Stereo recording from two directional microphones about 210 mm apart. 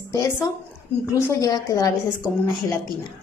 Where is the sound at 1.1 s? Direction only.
15° left (ahead or behind).